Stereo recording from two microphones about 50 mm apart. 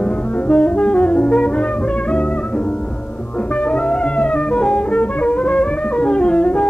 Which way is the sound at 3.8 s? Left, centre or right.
Left.